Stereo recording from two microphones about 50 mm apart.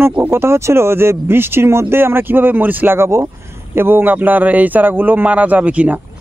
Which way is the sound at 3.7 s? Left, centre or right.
Right.